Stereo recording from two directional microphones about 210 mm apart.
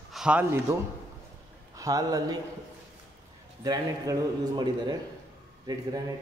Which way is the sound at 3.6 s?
20° right (ahead or behind).